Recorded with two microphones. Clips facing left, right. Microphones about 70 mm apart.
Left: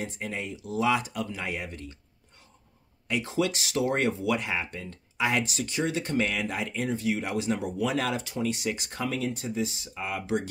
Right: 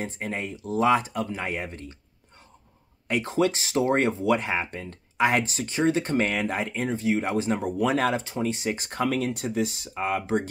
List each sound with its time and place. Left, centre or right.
0.0 s speech: right
3.1 s speech: right